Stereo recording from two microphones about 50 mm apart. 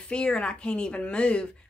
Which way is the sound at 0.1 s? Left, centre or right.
Centre.